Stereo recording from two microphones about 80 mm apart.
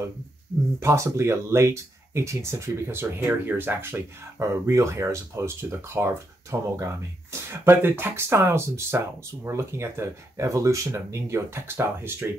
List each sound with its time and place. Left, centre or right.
0.7 s speech: right